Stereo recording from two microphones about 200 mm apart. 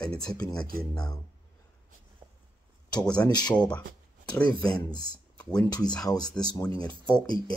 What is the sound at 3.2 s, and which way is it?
Speech, 20° left (ahead or behind).